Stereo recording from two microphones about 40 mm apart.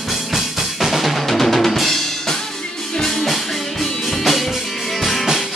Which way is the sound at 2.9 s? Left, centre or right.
Centre.